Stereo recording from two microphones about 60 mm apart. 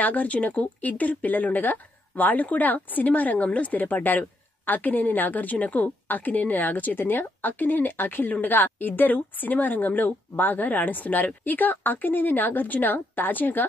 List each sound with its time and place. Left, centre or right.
0.0 s speech: left